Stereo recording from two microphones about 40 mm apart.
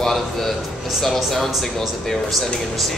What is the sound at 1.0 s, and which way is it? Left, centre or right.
Speech, centre.